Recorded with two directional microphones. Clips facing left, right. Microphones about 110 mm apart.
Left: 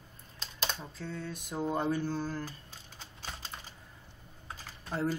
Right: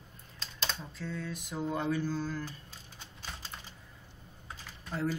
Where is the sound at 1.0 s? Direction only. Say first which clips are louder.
Right 2 dB; 25° left (ahead or behind).